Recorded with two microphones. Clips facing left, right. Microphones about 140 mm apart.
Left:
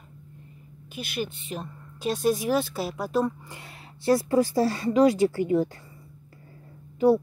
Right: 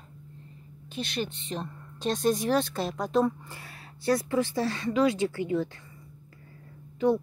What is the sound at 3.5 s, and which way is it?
A woman's voice, 25° left (ahead or behind).